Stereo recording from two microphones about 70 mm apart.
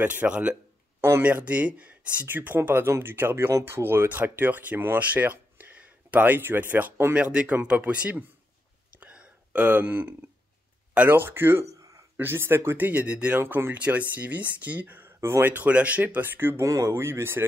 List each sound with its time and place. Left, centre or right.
0.0 s speech: right
0.3 s speech: centre
7.6 s speech: centre
9.0 s a sound: centre
11.0 s speech: right
11.6 s a sound: right
12.2 s speech: right; by 13.4 s centre
13.4 s speech: right
13.7 s speech: centre
15.1 s speech: right
15.5 s speech: right
16.6 s speech: right
16.9 s speech: right